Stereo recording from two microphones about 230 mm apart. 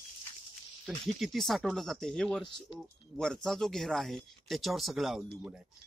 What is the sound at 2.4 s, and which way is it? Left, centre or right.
Speech, centre.